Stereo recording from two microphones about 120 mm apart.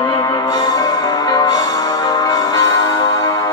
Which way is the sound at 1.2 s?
35° left (ahead or behind).